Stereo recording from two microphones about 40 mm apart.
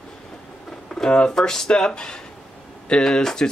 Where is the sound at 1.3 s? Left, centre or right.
Centre.